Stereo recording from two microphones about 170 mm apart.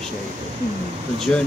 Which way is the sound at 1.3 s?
10° left (ahead or behind).